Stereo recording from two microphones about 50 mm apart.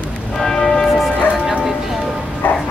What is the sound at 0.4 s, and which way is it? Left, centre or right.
Church bell, centre.